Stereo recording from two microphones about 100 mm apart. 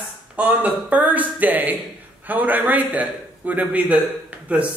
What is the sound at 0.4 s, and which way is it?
A man's voice, 15° right (ahead or behind).